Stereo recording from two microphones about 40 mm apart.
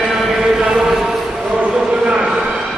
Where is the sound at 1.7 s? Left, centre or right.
Right.